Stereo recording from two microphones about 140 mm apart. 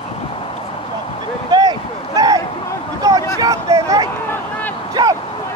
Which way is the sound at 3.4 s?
25° right (ahead or behind).